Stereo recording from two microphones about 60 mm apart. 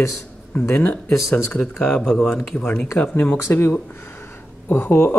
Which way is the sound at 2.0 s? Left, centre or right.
Centre.